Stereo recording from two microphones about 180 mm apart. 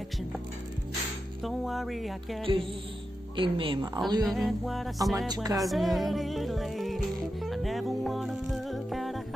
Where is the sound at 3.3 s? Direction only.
30° right (ahead or behind).